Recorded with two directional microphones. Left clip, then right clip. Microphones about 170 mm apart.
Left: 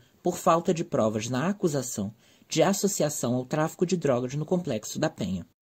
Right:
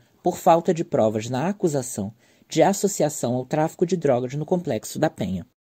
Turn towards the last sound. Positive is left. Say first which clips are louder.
# right 5 dB
turn(degrees=-30)  # may be behind; listen again after turning